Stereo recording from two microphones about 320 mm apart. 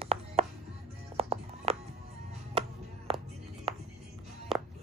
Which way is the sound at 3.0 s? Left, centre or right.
Centre.